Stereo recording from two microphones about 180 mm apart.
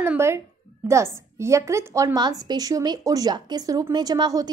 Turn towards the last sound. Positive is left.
turn(degrees=-20)  # may be behind; listen again after turning